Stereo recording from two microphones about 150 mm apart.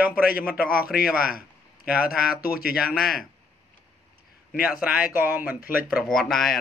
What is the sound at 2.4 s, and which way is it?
Speech, 90° left.